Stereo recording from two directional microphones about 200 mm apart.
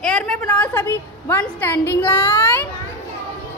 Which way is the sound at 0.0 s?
5° left (ahead or behind).